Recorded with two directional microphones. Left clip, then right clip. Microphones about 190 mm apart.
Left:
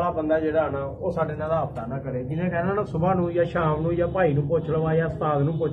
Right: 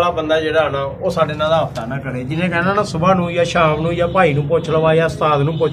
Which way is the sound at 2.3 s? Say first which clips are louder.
Right 10 dB; 25° right (ahead or behind).